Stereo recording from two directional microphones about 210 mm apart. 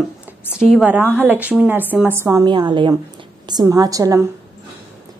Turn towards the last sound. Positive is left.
turn(degrees=-15)  # may be behind; listen again after turning